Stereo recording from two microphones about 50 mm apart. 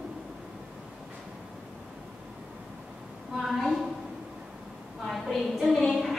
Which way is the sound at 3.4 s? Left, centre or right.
Centre.